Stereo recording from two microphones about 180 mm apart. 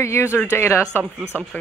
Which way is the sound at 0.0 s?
15° left (ahead or behind).